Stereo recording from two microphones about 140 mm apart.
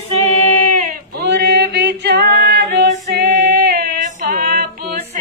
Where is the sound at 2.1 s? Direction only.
90° right.